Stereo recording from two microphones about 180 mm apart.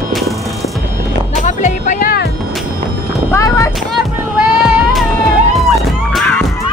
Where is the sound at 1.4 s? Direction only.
45° left (ahead or behind).